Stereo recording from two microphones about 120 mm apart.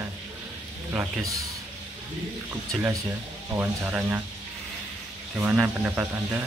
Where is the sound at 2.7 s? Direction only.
25° right (ahead or behind).